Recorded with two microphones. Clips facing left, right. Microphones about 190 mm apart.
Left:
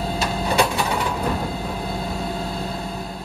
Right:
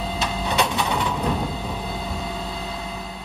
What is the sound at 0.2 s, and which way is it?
Printer, 5° left (ahead or behind).